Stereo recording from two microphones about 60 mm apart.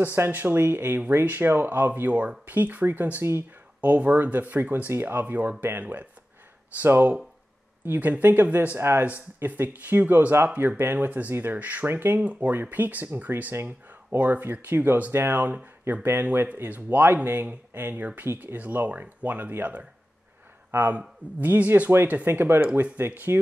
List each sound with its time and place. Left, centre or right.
0.0 s speech: right
8.7 s speech: right
9.0 s speech: right
11.1 s speech: right
16.3 s speech: right